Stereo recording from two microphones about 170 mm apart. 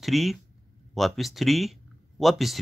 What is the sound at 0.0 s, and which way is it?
Speech, centre (ahead or behind).